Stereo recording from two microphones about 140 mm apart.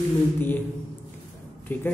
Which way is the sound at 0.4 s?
15° left (ahead or behind).